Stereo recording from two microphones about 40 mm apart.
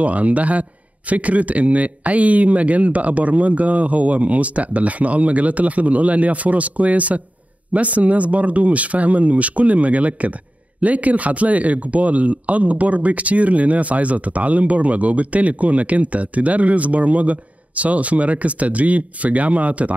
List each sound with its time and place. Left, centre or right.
0.0 s speech: right